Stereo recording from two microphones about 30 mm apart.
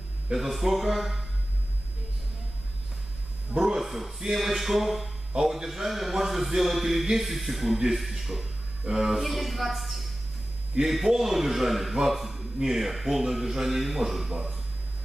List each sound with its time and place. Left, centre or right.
0.4 s a man's voice: centre
3.5 s speech: centre
5.3 s a man's voice: centre
5.7 s a man's voice: centre
9.2 s a man's voice: centre